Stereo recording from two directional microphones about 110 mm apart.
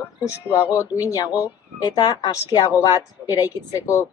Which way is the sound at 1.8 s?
35° left (ahead or behind).